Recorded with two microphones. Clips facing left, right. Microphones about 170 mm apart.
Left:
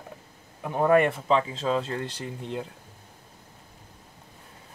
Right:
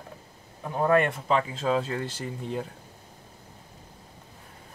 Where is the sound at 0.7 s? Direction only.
15° left (ahead or behind).